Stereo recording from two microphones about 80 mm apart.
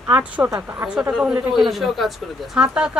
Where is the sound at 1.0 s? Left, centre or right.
Centre.